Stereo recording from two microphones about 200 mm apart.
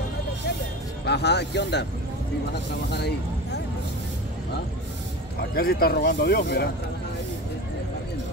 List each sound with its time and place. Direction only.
1.0 s speech: 55° left (ahead or behind)
5.5 s speech: 50° left (ahead or behind)